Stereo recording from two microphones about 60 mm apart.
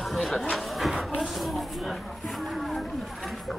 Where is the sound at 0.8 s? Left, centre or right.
Centre.